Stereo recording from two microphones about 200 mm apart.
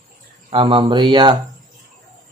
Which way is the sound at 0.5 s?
25° right (ahead or behind).